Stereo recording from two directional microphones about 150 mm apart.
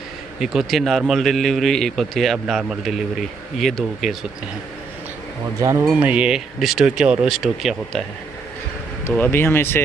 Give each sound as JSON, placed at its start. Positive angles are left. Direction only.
{"t": 0.4, "sound": "a man's voice", "side_deg": 0}
{"t": 5.6, "sound": "speech", "side_deg": -20}
{"t": 5.9, "sound": "a man's voice", "side_deg": -10}
{"t": 9.0, "sound": "speech", "side_deg": 15}